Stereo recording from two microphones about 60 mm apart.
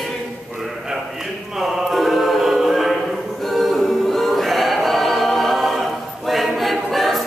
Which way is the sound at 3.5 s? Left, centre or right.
Centre.